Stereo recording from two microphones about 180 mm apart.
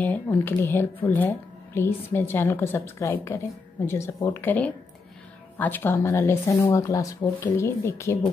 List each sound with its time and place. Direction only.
0.0 s speech: 10° left (ahead or behind)